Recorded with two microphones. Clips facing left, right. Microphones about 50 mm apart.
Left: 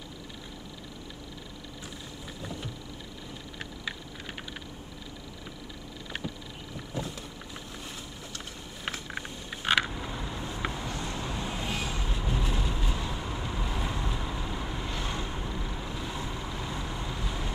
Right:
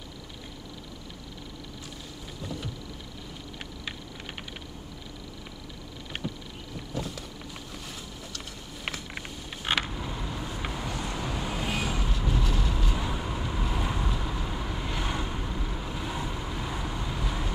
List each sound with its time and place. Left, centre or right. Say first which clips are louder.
6.9 s vehicle: right 1 dB; left
9.7 s vehicle: left 2 dB; centre
12.1 s vehicle: right 2 dB; centre
12.9 s vehicle: right 3 dB; centre
14.1 s vehicle: right 1 dB; centre
14.9 s vehicle: right 2 dB; centre